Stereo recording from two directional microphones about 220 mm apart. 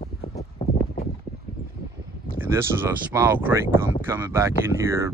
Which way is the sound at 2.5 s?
10° right (ahead or behind).